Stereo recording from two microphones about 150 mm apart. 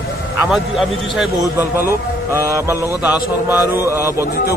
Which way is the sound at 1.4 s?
15° right (ahead or behind).